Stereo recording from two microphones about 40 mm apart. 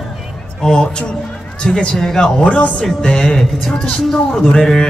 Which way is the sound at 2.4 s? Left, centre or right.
Left.